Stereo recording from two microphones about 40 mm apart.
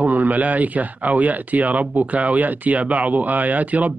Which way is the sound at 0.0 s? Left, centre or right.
Right.